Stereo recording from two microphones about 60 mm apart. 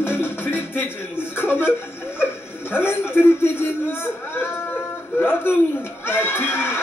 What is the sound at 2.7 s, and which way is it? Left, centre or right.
A man's voice, left.